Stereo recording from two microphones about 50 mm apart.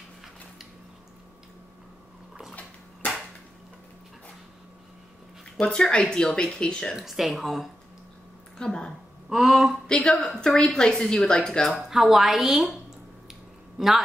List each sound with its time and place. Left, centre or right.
5.6 s speech: centre
7.0 s speech: centre
8.5 s speech: centre
9.3 s speech: centre
9.8 s speech: centre
11.9 s a woman's voice: centre
13.3 s a sound: centre